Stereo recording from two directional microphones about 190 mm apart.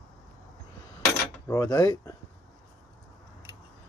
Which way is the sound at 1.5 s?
15° left (ahead or behind).